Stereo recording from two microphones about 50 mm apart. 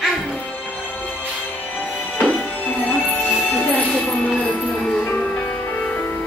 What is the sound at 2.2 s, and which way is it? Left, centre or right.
Music, left.